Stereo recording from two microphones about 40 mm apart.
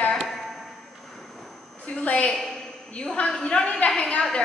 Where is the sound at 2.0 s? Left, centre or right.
Left.